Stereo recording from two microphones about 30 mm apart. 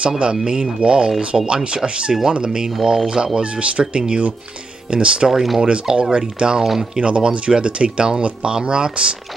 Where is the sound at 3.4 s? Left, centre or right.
Right.